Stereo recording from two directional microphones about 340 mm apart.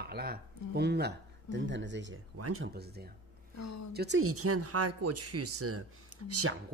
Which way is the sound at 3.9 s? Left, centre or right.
Right.